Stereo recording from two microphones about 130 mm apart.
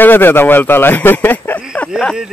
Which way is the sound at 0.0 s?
15° left (ahead or behind).